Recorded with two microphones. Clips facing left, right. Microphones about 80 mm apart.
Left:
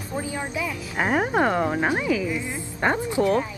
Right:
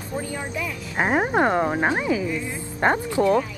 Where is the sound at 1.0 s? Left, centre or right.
Centre.